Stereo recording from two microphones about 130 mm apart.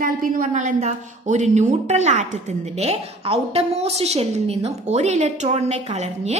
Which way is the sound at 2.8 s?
50° right (ahead or behind).